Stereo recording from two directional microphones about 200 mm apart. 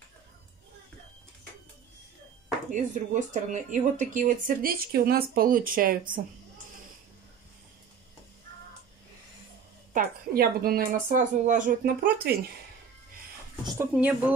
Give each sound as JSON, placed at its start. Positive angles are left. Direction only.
{"t": 2.7, "sound": "speech", "side_deg": -40}
{"t": 9.9, "sound": "speech", "side_deg": -50}
{"t": 13.7, "sound": "speech", "side_deg": -5}